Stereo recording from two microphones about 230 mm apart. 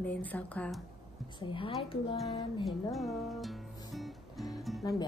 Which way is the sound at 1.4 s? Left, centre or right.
Left.